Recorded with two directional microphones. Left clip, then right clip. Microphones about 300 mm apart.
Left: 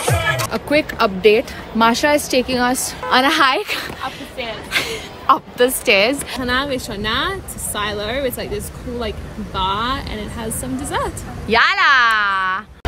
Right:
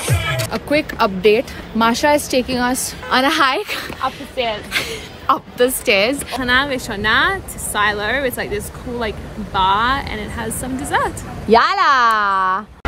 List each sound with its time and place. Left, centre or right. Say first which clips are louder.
0.0 s music: left 3 dB; centre
0.5 s a woman's voice: left 1 dB; centre
11.5 s speech: even; centre